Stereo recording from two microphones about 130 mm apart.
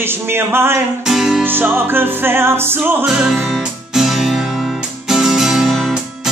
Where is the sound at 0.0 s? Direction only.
15° right (ahead or behind).